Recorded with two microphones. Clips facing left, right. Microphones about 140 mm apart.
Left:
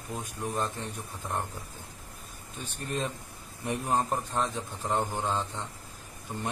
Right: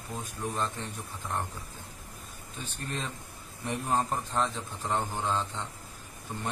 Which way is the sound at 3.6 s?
15° left (ahead or behind).